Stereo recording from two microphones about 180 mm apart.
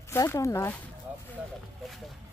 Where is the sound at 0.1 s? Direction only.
15° left (ahead or behind).